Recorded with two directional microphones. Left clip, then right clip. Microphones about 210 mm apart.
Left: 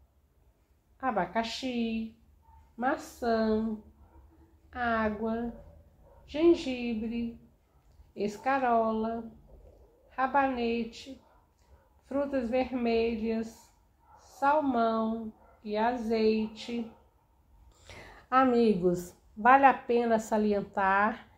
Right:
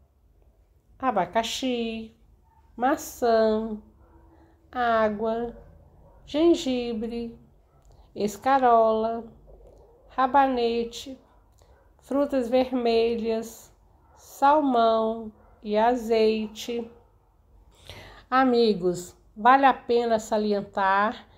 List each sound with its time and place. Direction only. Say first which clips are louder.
0.9 s a woman's voice: right 6 dB; 40° right (ahead or behind)
4.6 s a woman's voice: right 7 dB; 45° right (ahead or behind)
12.0 s a woman's voice: right 6 dB; 45° right (ahead or behind)
17.8 s a woman's voice: right 5 dB; 15° right (ahead or behind)